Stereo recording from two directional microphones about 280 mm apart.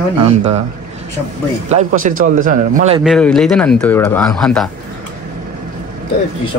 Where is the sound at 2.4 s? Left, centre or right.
Right.